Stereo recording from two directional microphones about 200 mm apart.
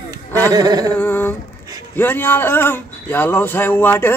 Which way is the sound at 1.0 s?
10° left (ahead or behind).